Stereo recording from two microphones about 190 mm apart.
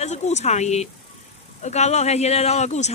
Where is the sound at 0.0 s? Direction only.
35° left (ahead or behind).